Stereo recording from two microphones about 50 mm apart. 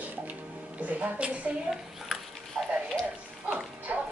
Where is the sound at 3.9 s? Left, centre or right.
Right.